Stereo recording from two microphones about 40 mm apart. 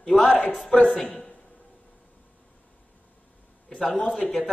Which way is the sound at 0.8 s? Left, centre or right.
Centre.